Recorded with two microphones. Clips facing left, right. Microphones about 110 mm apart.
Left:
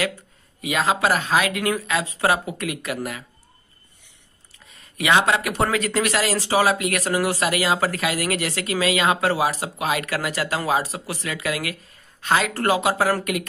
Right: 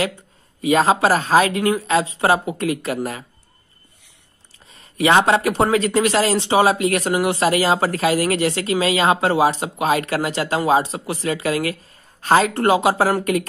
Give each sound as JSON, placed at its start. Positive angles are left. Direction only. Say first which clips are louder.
{"t": 0.6, "sound": "speech", "louder": "right 6 dB", "side_deg": -35}
{"t": 4.6, "sound": "speech", "louder": "right 4 dB", "side_deg": -30}